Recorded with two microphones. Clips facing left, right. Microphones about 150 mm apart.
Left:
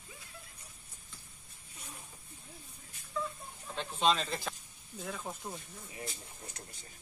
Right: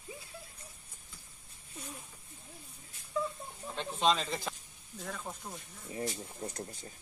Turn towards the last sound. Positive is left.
turn(degrees=5)  # may be behind; listen again after turning